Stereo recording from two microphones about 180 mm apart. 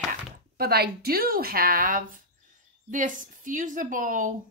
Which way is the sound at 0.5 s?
60° right (ahead or behind).